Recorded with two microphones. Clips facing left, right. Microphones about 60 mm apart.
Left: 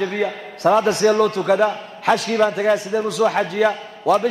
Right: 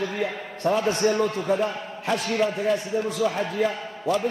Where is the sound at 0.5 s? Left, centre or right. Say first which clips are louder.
Left 7 dB; left.